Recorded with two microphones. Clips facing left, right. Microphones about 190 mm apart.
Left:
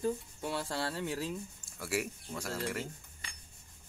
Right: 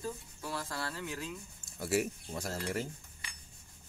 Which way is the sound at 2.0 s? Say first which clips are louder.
Right 2 dB; 40° right (ahead or behind).